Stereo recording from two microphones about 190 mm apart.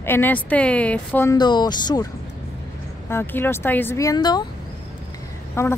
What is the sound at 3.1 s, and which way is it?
Speech, 10° left (ahead or behind).